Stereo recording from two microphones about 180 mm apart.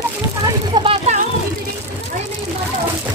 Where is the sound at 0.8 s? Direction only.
40° right (ahead or behind).